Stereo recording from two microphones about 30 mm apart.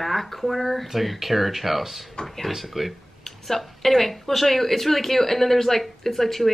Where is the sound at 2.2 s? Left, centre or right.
Centre.